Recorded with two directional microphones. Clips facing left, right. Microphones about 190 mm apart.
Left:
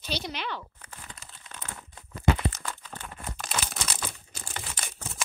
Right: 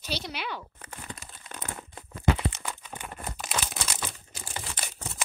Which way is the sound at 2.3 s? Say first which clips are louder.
Even; 15° right (ahead or behind).